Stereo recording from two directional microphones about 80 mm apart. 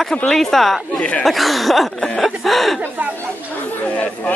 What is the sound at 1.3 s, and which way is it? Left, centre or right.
Speech, centre.